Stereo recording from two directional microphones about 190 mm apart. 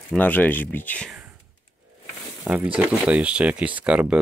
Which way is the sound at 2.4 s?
5° right (ahead or behind).